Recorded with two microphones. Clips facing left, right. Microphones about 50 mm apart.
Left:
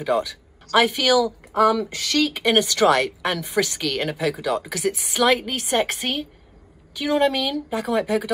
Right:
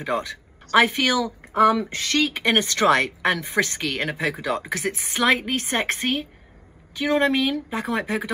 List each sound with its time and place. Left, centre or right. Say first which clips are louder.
0.0 s speech: left 4 dB; right